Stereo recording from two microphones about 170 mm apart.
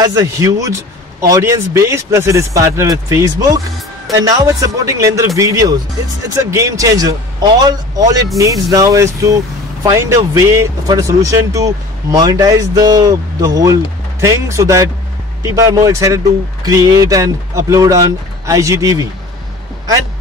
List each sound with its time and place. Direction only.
0.0 s speech: 20° right (ahead or behind)